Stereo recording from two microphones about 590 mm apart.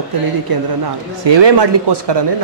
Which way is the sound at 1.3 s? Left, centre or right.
Right.